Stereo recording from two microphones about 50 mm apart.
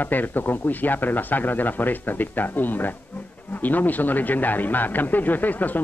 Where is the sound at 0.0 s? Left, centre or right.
Left.